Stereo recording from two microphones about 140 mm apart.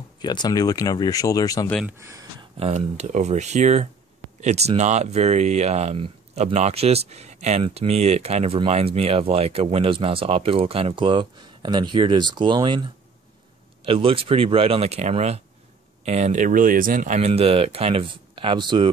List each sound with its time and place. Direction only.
0.2 s speech: 30° left (ahead or behind)
1.9 s speech: 20° right (ahead or behind)
2.6 s speech: 55° right (ahead or behind); by 12.8 s 35° right (ahead or behind)
13.8 s speech: 40° right (ahead or behind); by 17.3 s 60° right (ahead or behind)
17.3 s speech: 45° right (ahead or behind)